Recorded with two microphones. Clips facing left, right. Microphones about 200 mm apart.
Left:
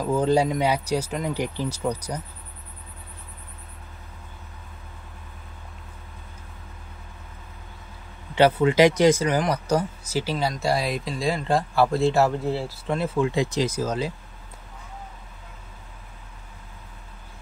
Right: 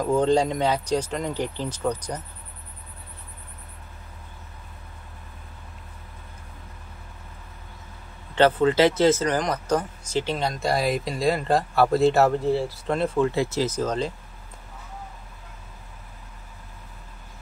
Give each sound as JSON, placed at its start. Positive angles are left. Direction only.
{"t": 0.1, "sound": "speech", "side_deg": 5}
{"t": 8.4, "sound": "speech", "side_deg": 10}
{"t": 13.3, "sound": "speech", "side_deg": 15}